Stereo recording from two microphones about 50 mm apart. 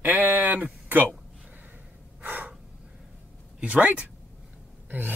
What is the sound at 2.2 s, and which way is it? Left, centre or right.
Gasp, right.